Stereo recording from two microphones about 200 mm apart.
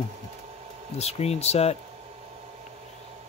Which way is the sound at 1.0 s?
30° left (ahead or behind).